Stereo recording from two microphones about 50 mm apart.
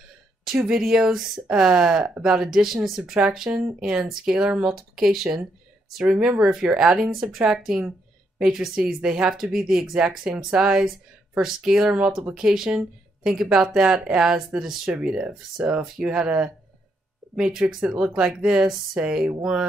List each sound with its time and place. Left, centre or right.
0.6 s speech: centre
4.6 s speech: centre
15.0 s speech: centre